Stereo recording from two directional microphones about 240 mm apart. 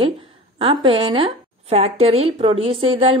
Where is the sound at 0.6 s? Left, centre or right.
Right.